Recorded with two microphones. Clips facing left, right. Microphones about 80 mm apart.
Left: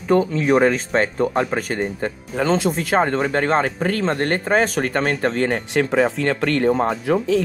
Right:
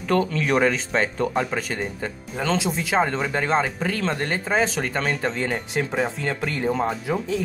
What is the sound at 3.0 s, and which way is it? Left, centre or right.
Speech, left.